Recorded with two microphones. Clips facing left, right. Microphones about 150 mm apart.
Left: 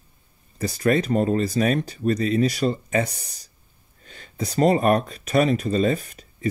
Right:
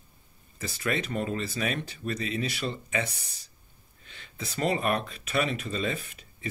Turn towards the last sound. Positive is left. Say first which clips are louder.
# left 10 dB
turn(degrees=40)  # may be behind; listen again after turning